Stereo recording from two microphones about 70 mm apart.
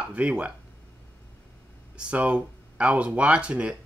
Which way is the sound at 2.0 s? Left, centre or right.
Centre.